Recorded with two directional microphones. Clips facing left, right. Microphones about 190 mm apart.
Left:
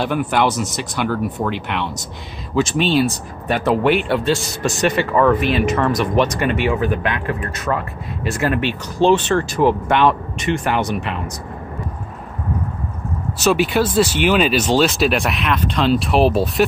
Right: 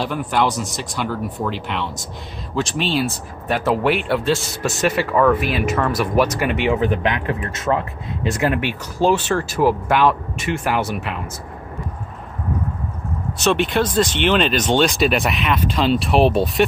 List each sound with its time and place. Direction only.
0.0 s speech: 65° left (ahead or behind)
0.5 s speech: centre (ahead or behind)
1.0 s speech: 65° left (ahead or behind)
2.5 s speech: centre (ahead or behind)
6.5 s speech: 20° right (ahead or behind)
13.4 s speech: 5° left (ahead or behind)